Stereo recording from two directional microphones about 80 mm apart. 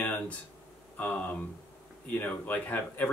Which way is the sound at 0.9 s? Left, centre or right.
Centre.